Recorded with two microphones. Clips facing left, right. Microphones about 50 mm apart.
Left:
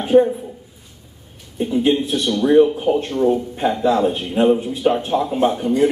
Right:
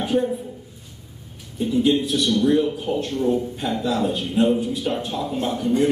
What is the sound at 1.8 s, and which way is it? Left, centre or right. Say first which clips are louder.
A man's voice: left 1 dB; left.